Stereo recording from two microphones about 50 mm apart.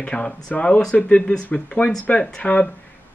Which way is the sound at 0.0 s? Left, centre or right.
Left.